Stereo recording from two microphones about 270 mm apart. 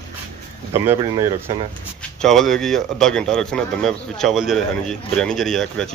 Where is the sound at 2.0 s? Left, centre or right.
Centre.